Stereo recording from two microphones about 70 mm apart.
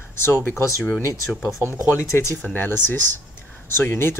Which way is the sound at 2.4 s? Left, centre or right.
Left.